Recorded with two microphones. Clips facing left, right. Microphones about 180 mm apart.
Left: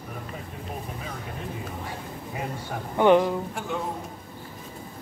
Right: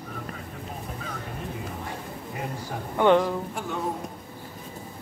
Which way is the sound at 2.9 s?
15° left (ahead or behind).